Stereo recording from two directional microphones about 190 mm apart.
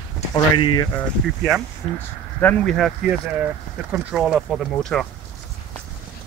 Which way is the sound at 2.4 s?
5° left (ahead or behind).